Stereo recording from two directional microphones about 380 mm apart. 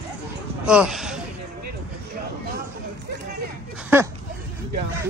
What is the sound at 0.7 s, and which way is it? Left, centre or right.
Speech, centre.